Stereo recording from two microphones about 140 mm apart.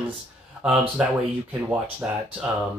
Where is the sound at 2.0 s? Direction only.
15° right (ahead or behind).